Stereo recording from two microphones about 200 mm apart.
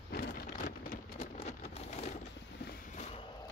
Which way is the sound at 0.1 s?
45° left (ahead or behind).